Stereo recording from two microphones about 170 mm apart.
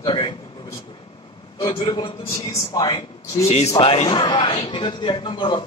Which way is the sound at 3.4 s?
35° left (ahead or behind).